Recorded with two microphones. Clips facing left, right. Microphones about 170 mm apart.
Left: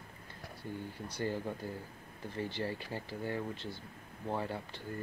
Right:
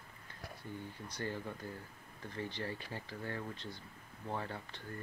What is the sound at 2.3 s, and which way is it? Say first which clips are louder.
Speech: left 4 dB; 30° left (ahead or behind).